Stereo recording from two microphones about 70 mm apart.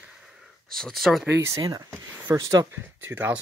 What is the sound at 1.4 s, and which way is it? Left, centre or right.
Speech, right.